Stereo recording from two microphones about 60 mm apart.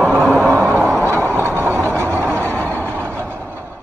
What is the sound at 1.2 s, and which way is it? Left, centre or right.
Vehicle, right.